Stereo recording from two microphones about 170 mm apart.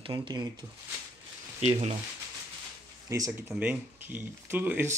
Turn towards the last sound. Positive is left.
turn(degrees=-10)  # may be behind; listen again after turning